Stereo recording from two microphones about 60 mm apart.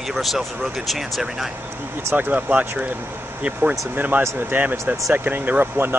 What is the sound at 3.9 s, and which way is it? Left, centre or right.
Speech, right.